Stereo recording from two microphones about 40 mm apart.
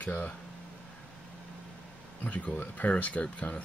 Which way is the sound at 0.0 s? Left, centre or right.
Left.